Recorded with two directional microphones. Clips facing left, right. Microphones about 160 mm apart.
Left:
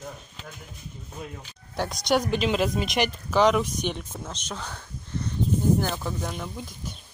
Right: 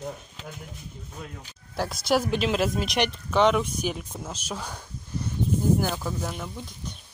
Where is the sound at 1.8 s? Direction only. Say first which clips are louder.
Even; 5° right (ahead or behind).